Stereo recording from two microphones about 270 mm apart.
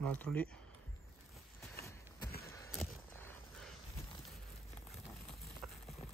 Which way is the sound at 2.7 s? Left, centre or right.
Centre.